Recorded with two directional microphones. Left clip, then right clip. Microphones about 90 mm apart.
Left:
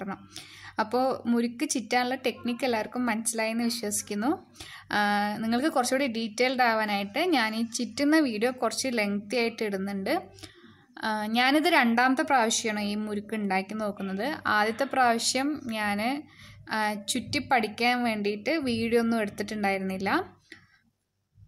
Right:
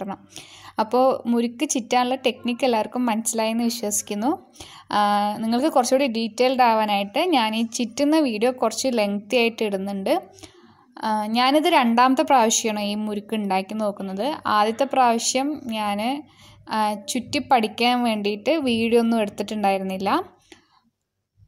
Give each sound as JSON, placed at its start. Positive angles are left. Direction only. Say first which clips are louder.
{"t": 0.0, "sound": "a woman's voice", "louder": "right 5 dB", "side_deg": -30}